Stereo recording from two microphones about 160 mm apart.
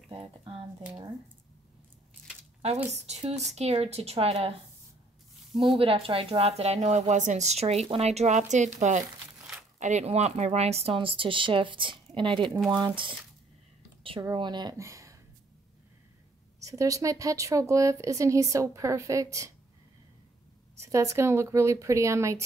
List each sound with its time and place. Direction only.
0.1 s speech: 35° right (ahead or behind)
2.9 s speech: 45° right (ahead or behind)
5.8 s a woman's voice: 35° right (ahead or behind)
9.8 s speech: 50° right (ahead or behind); by 12.4 s 30° right (ahead or behind)
12.4 s speech: centre (ahead or behind)
12.7 s speech: 30° right (ahead or behind)
14.2 s speech: 30° right (ahead or behind)
16.5 s speech: 20° right (ahead or behind)
20.8 s speech: 20° right (ahead or behind)